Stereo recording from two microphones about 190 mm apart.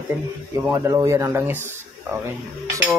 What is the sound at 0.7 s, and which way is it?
Speech, 15° right (ahead or behind).